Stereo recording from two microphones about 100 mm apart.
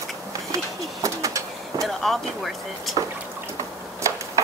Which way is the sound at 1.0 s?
35° right (ahead or behind).